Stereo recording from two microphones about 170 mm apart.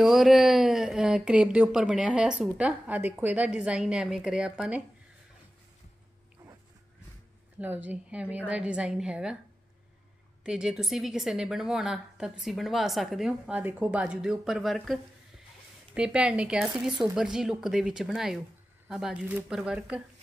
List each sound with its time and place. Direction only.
0.0 s speech: centre (ahead or behind)
7.5 s a woman's voice: 10° right (ahead or behind)
10.4 s speech: 5° right (ahead or behind)